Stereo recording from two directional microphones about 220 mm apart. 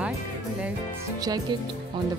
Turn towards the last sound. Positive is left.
turn(degrees=-15)  # may be behind; listen again after turning